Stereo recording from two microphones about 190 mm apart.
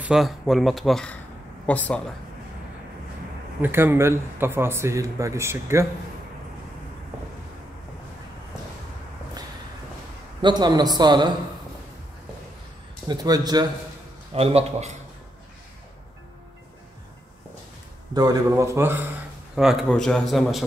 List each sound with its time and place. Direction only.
0.0 s speech: centre (ahead or behind)
3.6 s speech: 10° right (ahead or behind)
10.4 s a man's voice: 20° right (ahead or behind)
13.1 s a man's voice: 20° right (ahead or behind)
14.3 s a man's voice: 30° right (ahead or behind)
18.1 s speech: 20° right (ahead or behind); by 20.6 s centre (ahead or behind)